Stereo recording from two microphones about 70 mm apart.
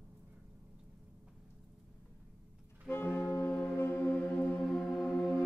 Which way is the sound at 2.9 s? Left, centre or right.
Left.